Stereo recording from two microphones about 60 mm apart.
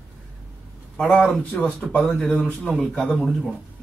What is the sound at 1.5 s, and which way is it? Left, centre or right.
Speech, centre.